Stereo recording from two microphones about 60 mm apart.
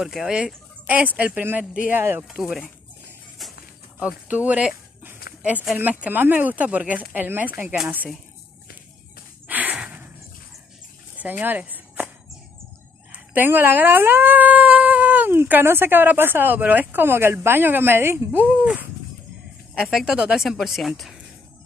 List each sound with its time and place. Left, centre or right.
0.0 s speech: centre
0.8 s speech: right
2.0 s speech: right
4.0 s speech: right
9.5 s a sound: right
9.8 s dog: right
11.1 s a sound: right
13.1 s speech: right
18.5 s speech: centre
19.9 s speech: centre
20.3 s speech: centre